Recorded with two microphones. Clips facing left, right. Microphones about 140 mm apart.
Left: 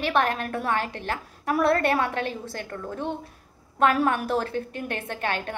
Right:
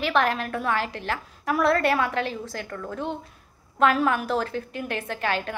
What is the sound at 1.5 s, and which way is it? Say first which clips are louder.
A woman's voice: even; 35° left (ahead or behind).